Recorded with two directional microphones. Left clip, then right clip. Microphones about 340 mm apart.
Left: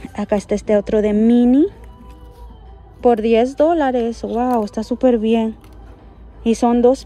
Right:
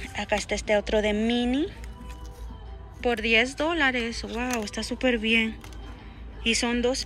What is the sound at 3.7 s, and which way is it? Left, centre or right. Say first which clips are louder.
Speech: left 8 dB; centre.